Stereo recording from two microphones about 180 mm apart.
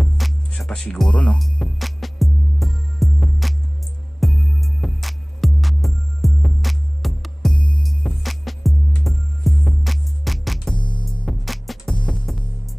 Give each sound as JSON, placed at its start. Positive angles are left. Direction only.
{"t": 0.0, "sound": "music", "side_deg": 0}
{"t": 7.5, "sound": "music", "side_deg": 25}
{"t": 7.8, "sound": "music", "side_deg": 0}
{"t": 10.8, "sound": "music", "side_deg": 25}
{"t": 11.2, "sound": "music", "side_deg": 0}